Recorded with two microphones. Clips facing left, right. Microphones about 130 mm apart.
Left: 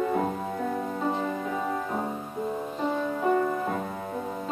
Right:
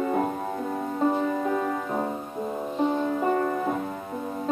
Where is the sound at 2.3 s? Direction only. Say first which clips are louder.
Left 1 dB; 15° right (ahead or behind).